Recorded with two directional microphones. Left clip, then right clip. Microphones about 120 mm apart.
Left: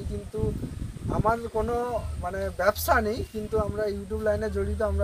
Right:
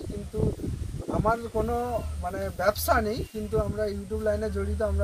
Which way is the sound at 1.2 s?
15° left (ahead or behind).